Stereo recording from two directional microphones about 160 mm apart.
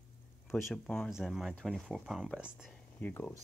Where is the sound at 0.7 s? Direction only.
Centre (ahead or behind).